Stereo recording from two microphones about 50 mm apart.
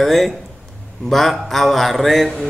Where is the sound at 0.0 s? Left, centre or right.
Centre.